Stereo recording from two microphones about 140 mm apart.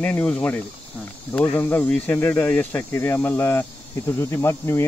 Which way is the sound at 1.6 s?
15° left (ahead or behind).